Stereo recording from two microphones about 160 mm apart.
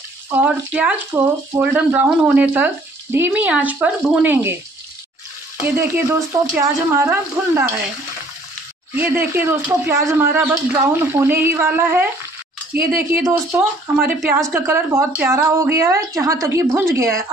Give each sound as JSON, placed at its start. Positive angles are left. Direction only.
{"t": 0.3, "sound": "speech", "side_deg": -10}
{"t": 5.6, "sound": "speech", "side_deg": -15}
{"t": 8.9, "sound": "speech", "side_deg": -10}
{"t": 13.3, "sound": "speech", "side_deg": -10}